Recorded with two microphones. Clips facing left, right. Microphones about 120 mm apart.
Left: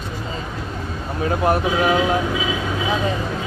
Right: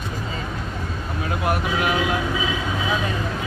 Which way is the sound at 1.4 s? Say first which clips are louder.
Left 4 dB; 30° left (ahead or behind).